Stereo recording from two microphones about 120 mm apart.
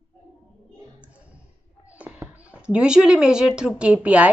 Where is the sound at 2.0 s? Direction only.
15° right (ahead or behind).